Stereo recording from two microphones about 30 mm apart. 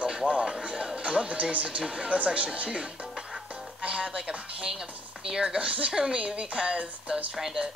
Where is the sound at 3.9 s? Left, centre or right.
Right.